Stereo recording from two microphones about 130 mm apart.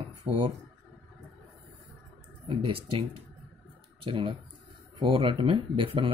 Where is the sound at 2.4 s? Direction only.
45° right (ahead or behind).